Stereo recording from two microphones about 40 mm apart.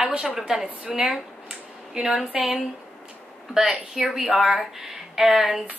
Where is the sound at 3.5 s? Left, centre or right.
Centre.